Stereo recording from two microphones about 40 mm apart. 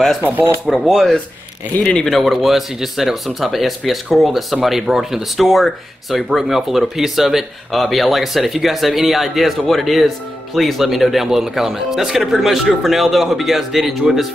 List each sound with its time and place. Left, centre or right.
0.2 s speech: right
0.7 s speech: centre
1.7 s speech: left
2.0 s speech: centre